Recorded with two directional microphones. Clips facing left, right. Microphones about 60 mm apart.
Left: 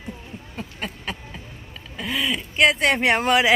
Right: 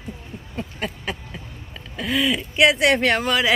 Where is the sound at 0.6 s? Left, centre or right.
Centre.